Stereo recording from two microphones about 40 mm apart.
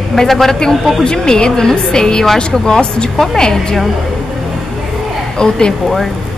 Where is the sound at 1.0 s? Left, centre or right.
Centre.